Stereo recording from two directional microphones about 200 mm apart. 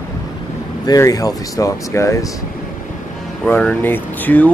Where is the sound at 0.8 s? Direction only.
15° left (ahead or behind).